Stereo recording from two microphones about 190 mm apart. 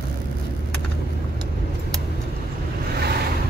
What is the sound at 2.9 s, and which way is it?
Vehicle, 55° right (ahead or behind).